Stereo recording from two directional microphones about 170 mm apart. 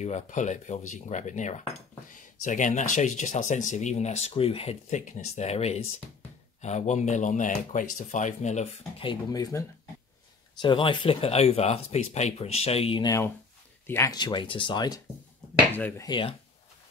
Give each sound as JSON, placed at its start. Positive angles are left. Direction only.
{"t": 0.0, "sound": "speech", "side_deg": 45}
{"t": 9.0, "sound": "speech", "side_deg": 25}
{"t": 13.0, "sound": "speech", "side_deg": 20}
{"t": 14.1, "sound": "speech", "side_deg": 25}
{"t": 15.7, "sound": "speech", "side_deg": 10}
{"t": 16.1, "sound": "speech", "side_deg": 30}